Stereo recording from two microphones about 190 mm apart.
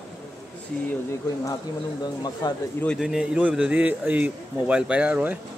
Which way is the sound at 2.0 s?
20° left (ahead or behind).